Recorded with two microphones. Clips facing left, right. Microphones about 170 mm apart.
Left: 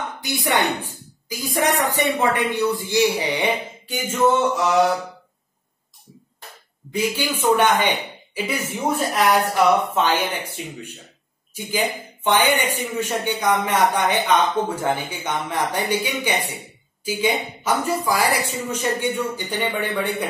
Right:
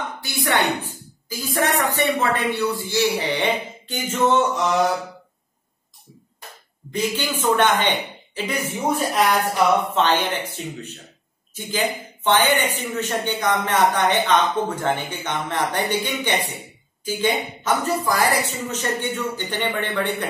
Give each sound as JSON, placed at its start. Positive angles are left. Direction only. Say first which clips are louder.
{"t": 0.2, "sound": "speech", "louder": "left 1 dB", "side_deg": 15}
{"t": 6.9, "sound": "a woman's voice", "louder": "left 1 dB", "side_deg": 10}